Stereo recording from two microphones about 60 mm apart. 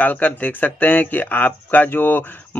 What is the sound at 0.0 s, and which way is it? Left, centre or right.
Speech, left.